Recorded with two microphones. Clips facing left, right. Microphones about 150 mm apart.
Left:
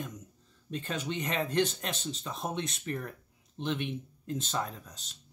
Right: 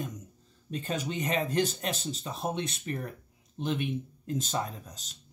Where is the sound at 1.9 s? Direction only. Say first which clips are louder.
Right 2 dB; 40° right (ahead or behind).